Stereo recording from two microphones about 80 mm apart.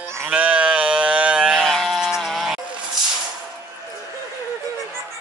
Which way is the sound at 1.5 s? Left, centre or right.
Centre.